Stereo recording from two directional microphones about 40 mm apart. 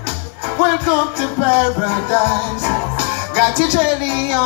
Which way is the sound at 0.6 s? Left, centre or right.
Right.